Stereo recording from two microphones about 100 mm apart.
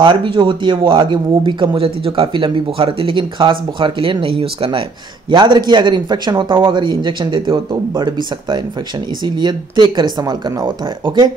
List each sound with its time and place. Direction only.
0.0 s speech: 50° right (ahead or behind)
5.3 s speech: 50° right (ahead or behind)